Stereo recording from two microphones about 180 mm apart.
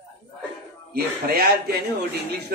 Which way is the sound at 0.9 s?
60° right (ahead or behind).